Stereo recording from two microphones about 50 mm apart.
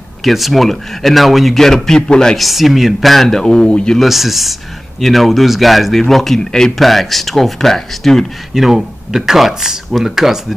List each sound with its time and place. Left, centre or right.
0.2 s speech: centre
2.3 s speech: centre
3.6 s speech: left
3.9 s speech: centre
8.5 s speech: centre